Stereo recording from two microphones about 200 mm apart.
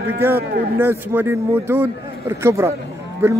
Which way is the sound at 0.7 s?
10° right (ahead or behind).